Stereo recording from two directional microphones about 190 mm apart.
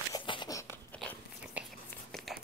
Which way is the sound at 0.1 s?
20° left (ahead or behind).